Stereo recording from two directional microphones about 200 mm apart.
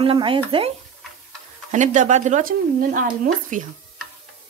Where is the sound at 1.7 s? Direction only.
35° right (ahead or behind).